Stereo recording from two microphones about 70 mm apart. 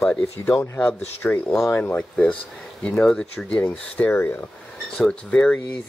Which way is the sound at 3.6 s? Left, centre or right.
Left.